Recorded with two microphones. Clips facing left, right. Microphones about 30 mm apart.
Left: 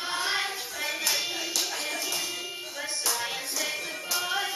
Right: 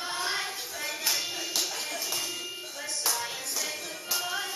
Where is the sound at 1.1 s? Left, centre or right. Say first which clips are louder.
Left 2 dB; centre.